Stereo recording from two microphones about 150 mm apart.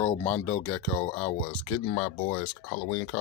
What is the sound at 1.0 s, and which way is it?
Speech, 35° left (ahead or behind).